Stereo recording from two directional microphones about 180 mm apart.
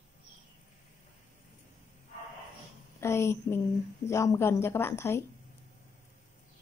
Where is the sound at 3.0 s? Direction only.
15° left (ahead or behind).